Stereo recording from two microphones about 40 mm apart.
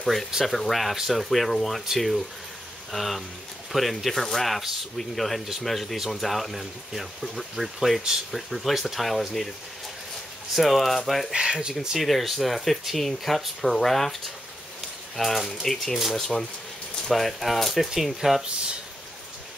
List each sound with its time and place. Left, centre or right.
0.0 s speech: centre
10.5 s speech: centre
11.3 s speech: right
12.0 s speech: centre